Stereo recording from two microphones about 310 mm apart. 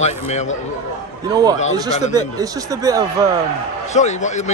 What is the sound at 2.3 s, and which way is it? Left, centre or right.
Speech, centre.